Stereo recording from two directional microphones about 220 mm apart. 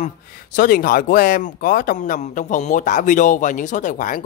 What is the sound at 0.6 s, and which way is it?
A man's voice, 40° left (ahead or behind).